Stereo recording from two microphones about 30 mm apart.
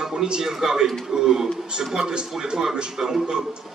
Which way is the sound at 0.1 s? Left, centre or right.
Right.